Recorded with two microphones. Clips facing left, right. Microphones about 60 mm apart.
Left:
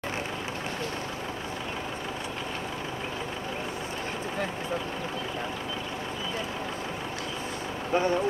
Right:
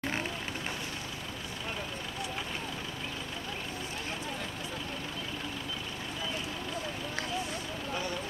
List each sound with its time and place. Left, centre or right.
7.9 s speech: left